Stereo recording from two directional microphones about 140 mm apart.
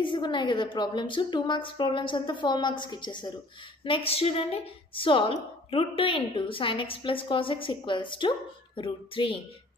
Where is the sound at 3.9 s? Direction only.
45° left (ahead or behind).